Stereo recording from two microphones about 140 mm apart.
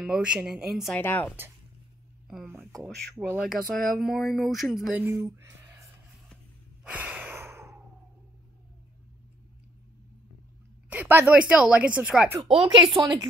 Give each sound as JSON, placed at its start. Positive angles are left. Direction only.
{"t": 0.0, "sound": "speech", "side_deg": -5}
{"t": 0.9, "sound": "speech", "side_deg": 15}
{"t": 2.2, "sound": "a sound", "side_deg": 0}
{"t": 3.3, "sound": "speech", "side_deg": 0}
{"t": 5.0, "sound": "speech", "side_deg": -20}
{"t": 6.8, "sound": "breathing", "side_deg": -10}
{"t": 10.9, "sound": "speech", "side_deg": -15}
{"t": 12.4, "sound": "speech", "side_deg": -40}